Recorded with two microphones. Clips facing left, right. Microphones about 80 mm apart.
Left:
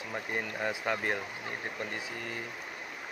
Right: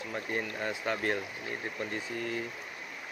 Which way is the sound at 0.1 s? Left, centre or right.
Centre.